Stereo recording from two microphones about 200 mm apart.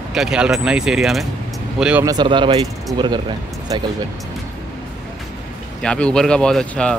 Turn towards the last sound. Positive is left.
turn(degrees=5)  # may be behind; listen again after turning